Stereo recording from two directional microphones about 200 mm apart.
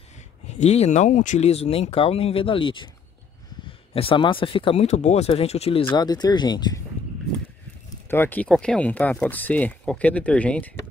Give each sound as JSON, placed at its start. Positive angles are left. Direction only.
{"t": 0.5, "sound": "speech", "side_deg": 35}
{"t": 8.1, "sound": "speech", "side_deg": 10}